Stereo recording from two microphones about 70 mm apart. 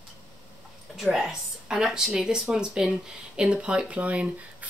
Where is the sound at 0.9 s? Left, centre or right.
Centre.